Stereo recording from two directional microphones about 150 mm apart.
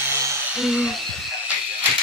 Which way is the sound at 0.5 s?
5° right (ahead or behind).